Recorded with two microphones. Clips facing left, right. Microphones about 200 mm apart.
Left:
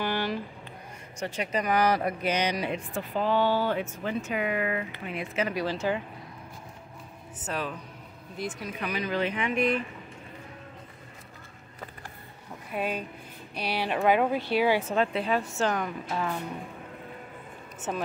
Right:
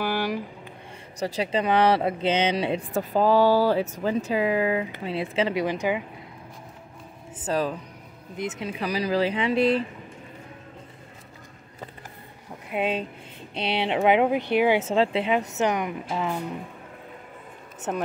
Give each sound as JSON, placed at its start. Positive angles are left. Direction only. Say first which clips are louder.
{"t": 0.0, "sound": "a sound", "louder": "right 3 dB", "side_deg": -10}
{"t": 1.2, "sound": "speech", "louder": "right 5 dB", "side_deg": -35}
{"t": 2.9, "sound": "speech", "louder": "right 7 dB", "side_deg": -40}
{"t": 7.4, "sound": "speech", "louder": "right 7 dB", "side_deg": -35}
{"t": 8.4, "sound": "speech", "louder": "right 4 dB", "side_deg": -25}
{"t": 8.8, "sound": "speech", "louder": "right 5 dB", "side_deg": -35}
{"t": 12.7, "sound": "speech", "louder": "right 5 dB", "side_deg": -20}